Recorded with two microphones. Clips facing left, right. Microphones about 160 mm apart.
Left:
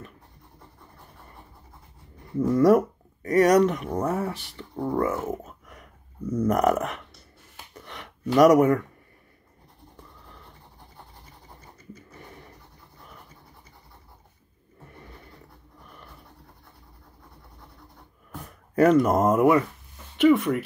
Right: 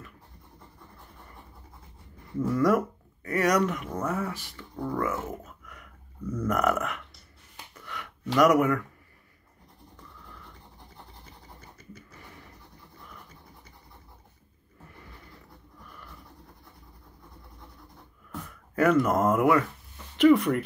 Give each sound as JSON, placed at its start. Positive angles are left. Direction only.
{"t": 2.3, "sound": "speech", "side_deg": 25}
{"t": 6.3, "sound": "a sound", "side_deg": 30}
{"t": 7.7, "sound": "gasp", "side_deg": 30}
{"t": 8.5, "sound": "speech", "side_deg": 30}
{"t": 18.5, "sound": "speech", "side_deg": 30}
{"t": 20.2, "sound": "speech", "side_deg": 0}